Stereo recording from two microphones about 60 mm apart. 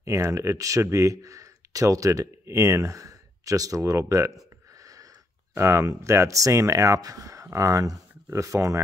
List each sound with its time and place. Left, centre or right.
0.0 s speech: right
5.5 s speech: right
8.3 s speech: right